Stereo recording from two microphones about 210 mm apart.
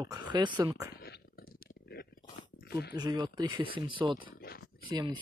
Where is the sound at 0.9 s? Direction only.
50° left (ahead or behind).